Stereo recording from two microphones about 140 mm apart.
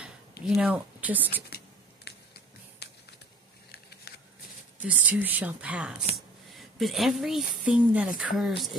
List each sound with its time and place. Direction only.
0.0 s speech: 10° right (ahead or behind)
4.1 s a sound: 90° left
4.8 s speech: 10° right (ahead or behind)